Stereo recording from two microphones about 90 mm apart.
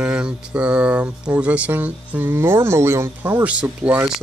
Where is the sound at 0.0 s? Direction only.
15° right (ahead or behind).